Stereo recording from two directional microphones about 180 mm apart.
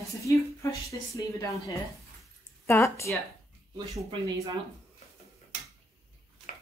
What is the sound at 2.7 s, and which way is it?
Speech, 15° left (ahead or behind).